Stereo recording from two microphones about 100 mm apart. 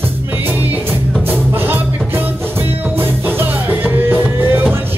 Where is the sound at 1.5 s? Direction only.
20° right (ahead or behind).